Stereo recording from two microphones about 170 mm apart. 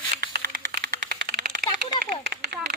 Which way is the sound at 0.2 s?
65° right (ahead or behind).